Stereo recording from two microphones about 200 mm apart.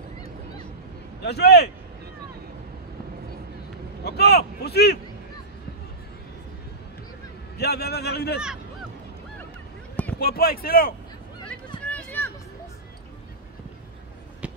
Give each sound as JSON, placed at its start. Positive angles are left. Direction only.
{"t": 1.2, "sound": "a man's voice", "side_deg": 55}
{"t": 4.0, "sound": "vehicle", "side_deg": 55}
{"t": 7.5, "sound": "speech", "side_deg": 55}
{"t": 10.1, "sound": "speech", "side_deg": 50}
{"t": 11.8, "sound": "a sound", "side_deg": 10}
{"t": 14.4, "sound": "basketball bounce", "side_deg": -5}